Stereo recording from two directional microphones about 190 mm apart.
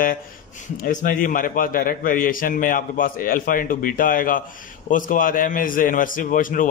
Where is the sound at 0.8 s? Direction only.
45° left (ahead or behind).